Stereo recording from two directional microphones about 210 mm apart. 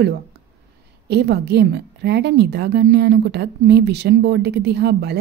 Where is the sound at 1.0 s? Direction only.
50° right (ahead or behind).